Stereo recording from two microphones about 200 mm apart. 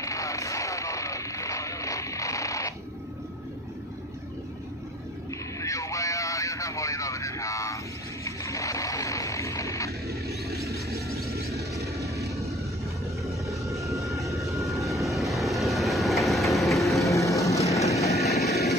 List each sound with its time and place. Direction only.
0.0 s a sound: 15° left (ahead or behind)
5.6 s vehicle: 15° left (ahead or behind)
11.8 s vehicle: 15° right (ahead or behind)
13.7 s vehicle: 15° right (ahead or behind)
13.9 s vehicle: centre (ahead or behind)
14.3 s vehicle: 15° right (ahead or behind)
14.7 s vehicle: centre (ahead or behind)
17.1 s vehicle: 15° left (ahead or behind)
18.2 s vehicle: centre (ahead or behind)